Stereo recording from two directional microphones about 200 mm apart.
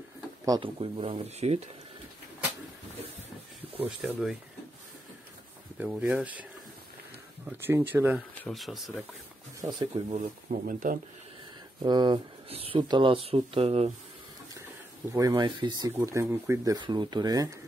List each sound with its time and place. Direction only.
0.5 s speech: 25° right (ahead or behind)
3.7 s speech: 5° right (ahead or behind)
5.8 s speech: 5° right (ahead or behind)
7.4 s speech: 10° right (ahead or behind)
9.6 s speech: 20° right (ahead or behind)
10.1 s speech: 45° right (ahead or behind)
11.8 s speech: 20° right (ahead or behind)
15.1 s speech: 20° right (ahead or behind)